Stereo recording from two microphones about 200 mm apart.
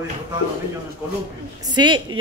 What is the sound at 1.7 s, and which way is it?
Speech, 25° right (ahead or behind).